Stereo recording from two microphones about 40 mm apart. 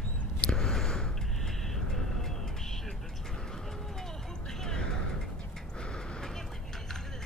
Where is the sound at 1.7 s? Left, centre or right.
Centre.